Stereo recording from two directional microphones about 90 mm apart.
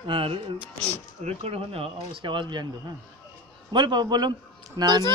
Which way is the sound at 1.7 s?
80° right.